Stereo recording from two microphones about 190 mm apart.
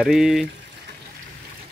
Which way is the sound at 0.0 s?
Centre (ahead or behind).